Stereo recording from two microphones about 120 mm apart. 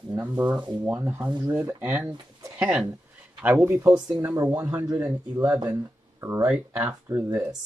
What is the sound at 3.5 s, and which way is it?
Speech, 30° right (ahead or behind).